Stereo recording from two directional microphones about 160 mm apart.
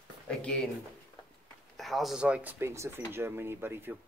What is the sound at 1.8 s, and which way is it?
Speech, centre (ahead or behind).